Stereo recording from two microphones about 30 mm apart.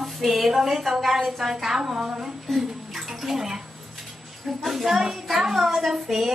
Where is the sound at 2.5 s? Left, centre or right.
Centre.